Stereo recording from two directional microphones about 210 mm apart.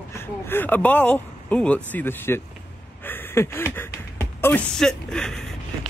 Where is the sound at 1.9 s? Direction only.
10° left (ahead or behind).